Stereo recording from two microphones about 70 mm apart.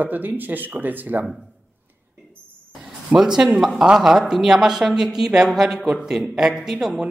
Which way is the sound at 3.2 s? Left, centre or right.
Centre.